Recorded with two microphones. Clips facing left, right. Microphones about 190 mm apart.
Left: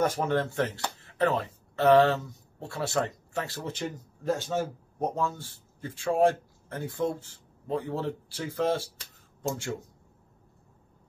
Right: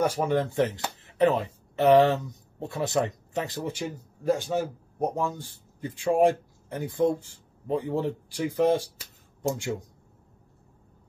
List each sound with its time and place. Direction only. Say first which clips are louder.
0.0 s speech: right 2 dB; 10° right (ahead or behind)